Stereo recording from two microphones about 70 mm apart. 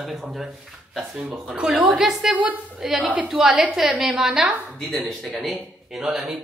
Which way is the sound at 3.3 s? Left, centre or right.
Centre.